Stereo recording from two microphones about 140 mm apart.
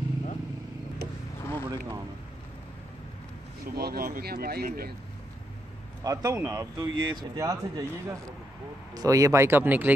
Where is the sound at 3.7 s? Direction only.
90° right.